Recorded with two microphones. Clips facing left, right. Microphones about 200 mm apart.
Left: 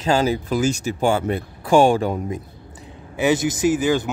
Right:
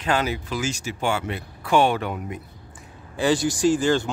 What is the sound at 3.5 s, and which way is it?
Speech, 15° left (ahead or behind).